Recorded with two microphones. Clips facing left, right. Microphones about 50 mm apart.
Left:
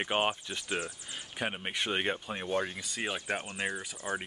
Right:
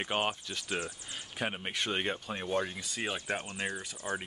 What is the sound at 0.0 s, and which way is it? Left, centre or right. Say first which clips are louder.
Speech: left 2 dB; centre.